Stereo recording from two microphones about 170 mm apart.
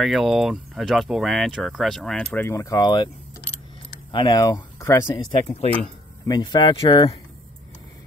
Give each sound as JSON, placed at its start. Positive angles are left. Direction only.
{"t": 0.0, "sound": "speech", "side_deg": 0}
{"t": 4.1, "sound": "speech", "side_deg": 25}
{"t": 5.1, "sound": "speech", "side_deg": 35}
{"t": 6.2, "sound": "speech", "side_deg": 20}